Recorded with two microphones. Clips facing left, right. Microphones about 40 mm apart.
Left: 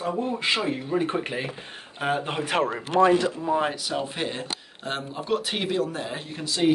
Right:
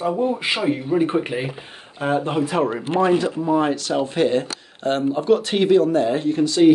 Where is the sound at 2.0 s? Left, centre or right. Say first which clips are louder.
Right 5 dB; centre.